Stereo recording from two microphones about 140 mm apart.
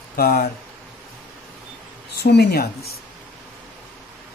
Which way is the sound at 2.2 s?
90° left.